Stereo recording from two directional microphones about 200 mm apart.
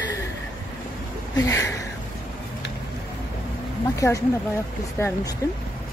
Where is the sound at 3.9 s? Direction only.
15° left (ahead or behind).